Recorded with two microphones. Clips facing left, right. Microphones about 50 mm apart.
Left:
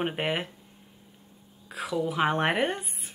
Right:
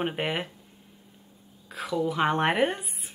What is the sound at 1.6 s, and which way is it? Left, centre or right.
Speech, centre.